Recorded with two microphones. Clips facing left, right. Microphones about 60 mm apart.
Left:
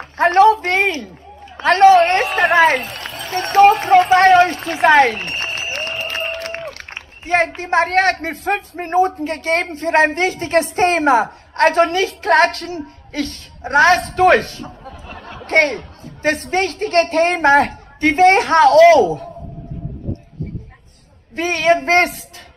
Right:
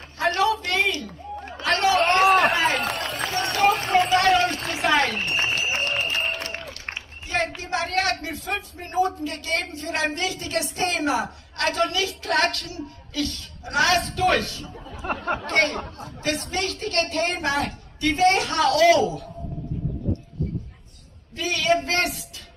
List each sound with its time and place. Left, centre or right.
0.2 s a woman's voice: left
2.5 s run: left
3.3 s clip-clop: left
4.1 s a sound: left
6.4 s a woman's voice: left
21.4 s a woman's voice: left